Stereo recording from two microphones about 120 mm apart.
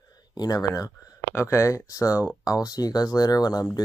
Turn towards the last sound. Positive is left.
turn(degrees=30)  # may be behind; listen again after turning